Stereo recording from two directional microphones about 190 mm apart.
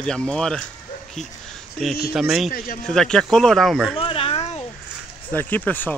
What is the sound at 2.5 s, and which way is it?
Speech, 50° left (ahead or behind).